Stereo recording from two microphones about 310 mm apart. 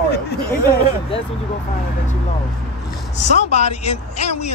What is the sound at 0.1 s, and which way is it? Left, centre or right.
Chatter, left.